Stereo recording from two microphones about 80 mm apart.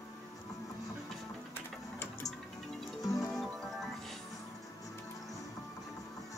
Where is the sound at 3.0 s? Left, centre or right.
Left.